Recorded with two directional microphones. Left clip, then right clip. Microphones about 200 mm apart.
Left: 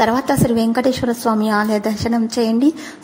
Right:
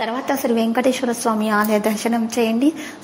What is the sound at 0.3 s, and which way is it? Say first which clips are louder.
A woman's voice: left 2 dB; 20° left (ahead or behind).